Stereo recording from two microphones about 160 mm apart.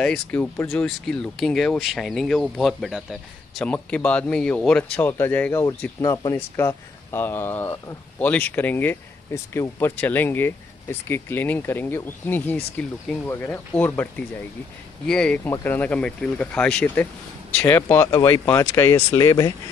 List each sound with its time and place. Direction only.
0.0 s speech: 5° left (ahead or behind); by 19.5 s 25° left (ahead or behind)